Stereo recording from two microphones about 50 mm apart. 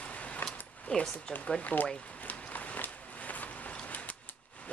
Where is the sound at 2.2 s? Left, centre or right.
Left.